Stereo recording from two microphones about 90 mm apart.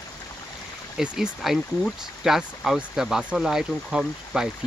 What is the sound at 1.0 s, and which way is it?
Speech, 5° right (ahead or behind).